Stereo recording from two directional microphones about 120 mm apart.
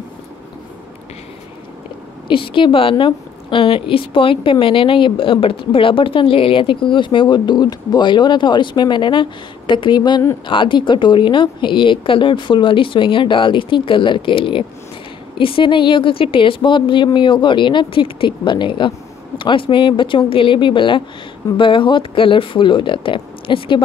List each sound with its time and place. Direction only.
2.2 s a woman's voice: 45° left (ahead or behind)